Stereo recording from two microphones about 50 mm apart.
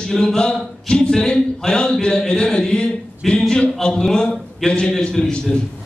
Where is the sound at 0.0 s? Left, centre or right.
Centre.